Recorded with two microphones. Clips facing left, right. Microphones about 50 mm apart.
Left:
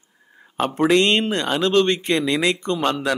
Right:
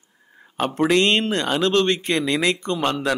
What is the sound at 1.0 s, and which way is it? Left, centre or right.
Speech, right.